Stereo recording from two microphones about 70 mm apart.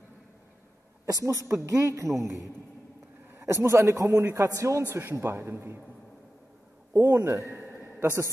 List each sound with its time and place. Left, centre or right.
1.0 s a man's voice: right
6.9 s a man's voice: right